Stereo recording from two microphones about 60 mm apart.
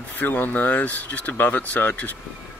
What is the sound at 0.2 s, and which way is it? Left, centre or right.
Speech, left.